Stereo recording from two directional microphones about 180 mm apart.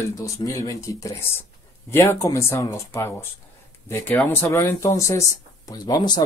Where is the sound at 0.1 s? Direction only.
20° left (ahead or behind).